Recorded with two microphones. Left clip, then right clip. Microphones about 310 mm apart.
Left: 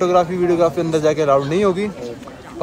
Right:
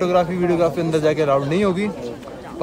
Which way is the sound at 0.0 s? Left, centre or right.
Centre.